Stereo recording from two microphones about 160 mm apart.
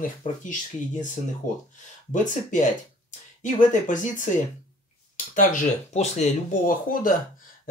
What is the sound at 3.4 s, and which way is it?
Speech, 50° left (ahead or behind).